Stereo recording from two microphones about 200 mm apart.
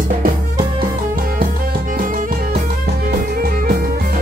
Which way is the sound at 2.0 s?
45° right (ahead or behind).